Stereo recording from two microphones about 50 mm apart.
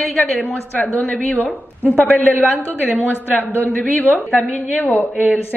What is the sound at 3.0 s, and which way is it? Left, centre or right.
Speech, left.